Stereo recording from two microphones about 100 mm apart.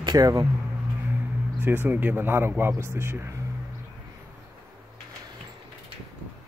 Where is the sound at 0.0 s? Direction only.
40° right (ahead or behind).